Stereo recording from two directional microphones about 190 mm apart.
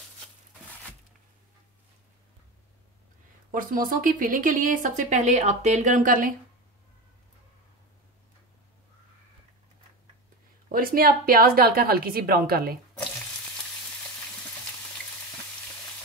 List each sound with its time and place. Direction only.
3.5 s speech: 45° right (ahead or behind)
10.7 s speech: 50° right (ahead or behind)